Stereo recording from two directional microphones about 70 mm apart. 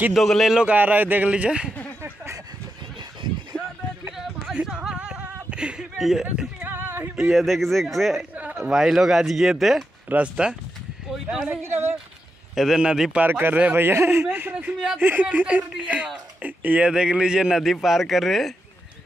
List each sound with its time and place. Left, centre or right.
0.1 s speech: centre
0.6 s speech: right
3.5 s music: centre
4.6 s a sound: centre
6.6 s a sound: right
7.2 s speech: centre
10.0 s speech: centre
11.6 s speech: right
12.5 s a man's voice: centre
13.2 s speech: right
14.3 s speech: right
15.4 s a man's voice: centre